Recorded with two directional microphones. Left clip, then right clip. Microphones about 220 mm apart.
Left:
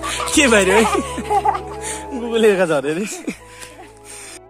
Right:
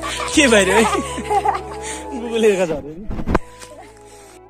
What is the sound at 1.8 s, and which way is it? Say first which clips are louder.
Music: left 1 dB; 20° left (ahead or behind).